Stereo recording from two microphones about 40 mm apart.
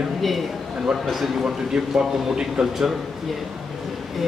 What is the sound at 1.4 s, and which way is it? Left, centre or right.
A man's voice, centre.